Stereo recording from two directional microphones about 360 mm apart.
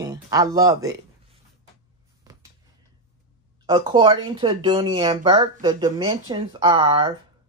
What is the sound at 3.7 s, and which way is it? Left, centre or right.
Speech, centre.